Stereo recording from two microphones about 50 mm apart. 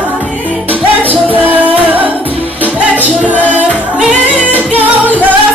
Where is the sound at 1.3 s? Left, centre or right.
Right.